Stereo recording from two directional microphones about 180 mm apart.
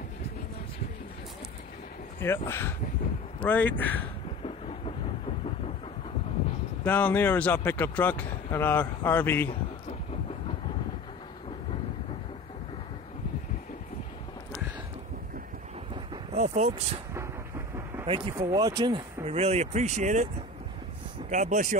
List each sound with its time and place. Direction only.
2.1 s speech: 15° left (ahead or behind)
6.8 s speech: 10° left (ahead or behind)
16.3 s speech: 40° right (ahead or behind)
18.0 s speech: 30° right (ahead or behind)
19.2 s speech: 35° right (ahead or behind)
21.3 s speech: 45° right (ahead or behind)